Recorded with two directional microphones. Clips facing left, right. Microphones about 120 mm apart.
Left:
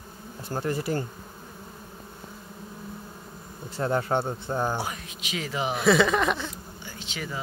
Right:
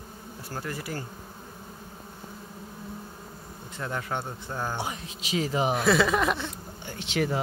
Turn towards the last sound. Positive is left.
turn(degrees=-65)  # may be behind; listen again after turning